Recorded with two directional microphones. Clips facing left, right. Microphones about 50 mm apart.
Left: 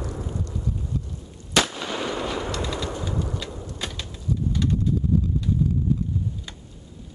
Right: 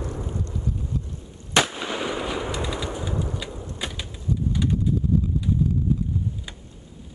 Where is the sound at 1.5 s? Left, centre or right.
Centre.